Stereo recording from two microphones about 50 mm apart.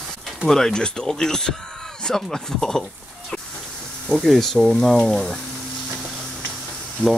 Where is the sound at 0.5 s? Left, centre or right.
Centre.